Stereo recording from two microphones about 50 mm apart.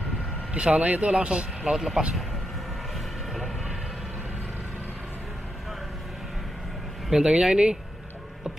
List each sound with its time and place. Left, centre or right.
0.5 s speech: right
7.1 s speech: centre